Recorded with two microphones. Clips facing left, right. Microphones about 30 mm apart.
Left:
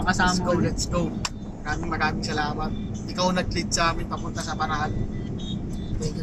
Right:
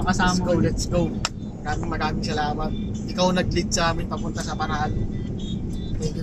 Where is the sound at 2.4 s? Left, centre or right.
Centre.